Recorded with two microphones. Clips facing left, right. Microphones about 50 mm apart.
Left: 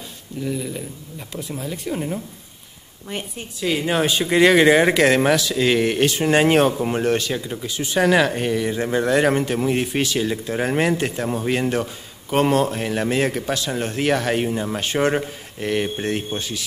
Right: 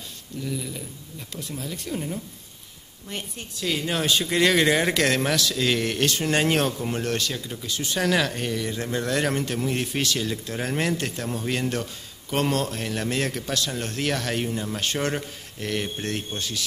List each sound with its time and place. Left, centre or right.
0.4 s speech: centre